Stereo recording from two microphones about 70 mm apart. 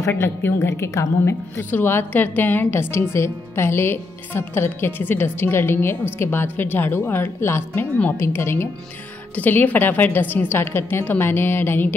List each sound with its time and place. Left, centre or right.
0.1 s a woman's voice: left
1.6 s a woman's voice: left
9.3 s a woman's voice: left